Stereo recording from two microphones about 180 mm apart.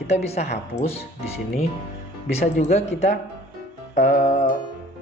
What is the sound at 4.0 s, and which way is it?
Music, 40° left (ahead or behind).